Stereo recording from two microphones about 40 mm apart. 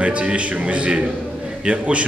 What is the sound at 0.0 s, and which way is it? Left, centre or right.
A man's voice, right.